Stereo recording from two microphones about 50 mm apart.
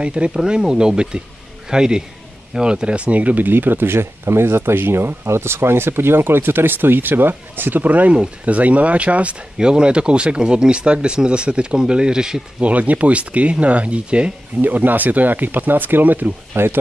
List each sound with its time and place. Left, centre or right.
0.0 s speech: right
12.6 s speech: right
14.6 s speech: right
16.5 s speech: right